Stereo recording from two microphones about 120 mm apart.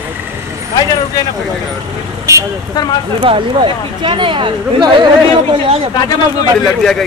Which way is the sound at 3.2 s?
45° right (ahead or behind).